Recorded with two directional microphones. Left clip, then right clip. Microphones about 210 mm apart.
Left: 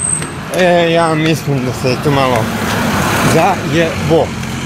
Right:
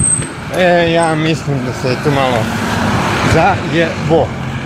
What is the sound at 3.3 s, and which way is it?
Speech, 15° left (ahead or behind).